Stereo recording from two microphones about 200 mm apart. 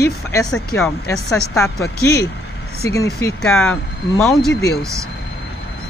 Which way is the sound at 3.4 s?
5° left (ahead or behind).